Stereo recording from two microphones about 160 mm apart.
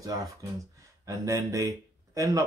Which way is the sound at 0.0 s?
20° right (ahead or behind).